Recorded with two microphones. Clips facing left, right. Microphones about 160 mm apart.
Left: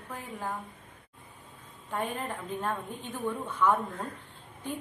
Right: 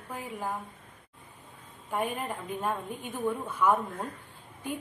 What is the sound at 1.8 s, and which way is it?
A woman's voice, 10° right (ahead or behind).